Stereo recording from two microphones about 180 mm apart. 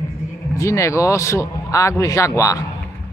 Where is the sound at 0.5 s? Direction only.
15° left (ahead or behind).